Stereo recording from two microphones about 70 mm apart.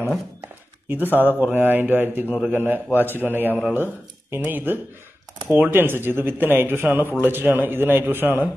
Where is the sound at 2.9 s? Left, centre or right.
Left.